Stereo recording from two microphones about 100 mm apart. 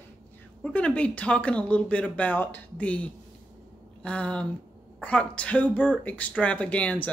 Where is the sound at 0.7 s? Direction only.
10° left (ahead or behind).